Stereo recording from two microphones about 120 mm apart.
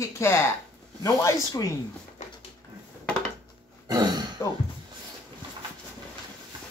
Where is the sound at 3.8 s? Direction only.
35° right (ahead or behind).